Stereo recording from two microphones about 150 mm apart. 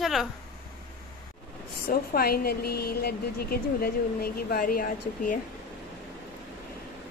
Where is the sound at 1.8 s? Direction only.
90° left; by 5.4 s 65° left (ahead or behind).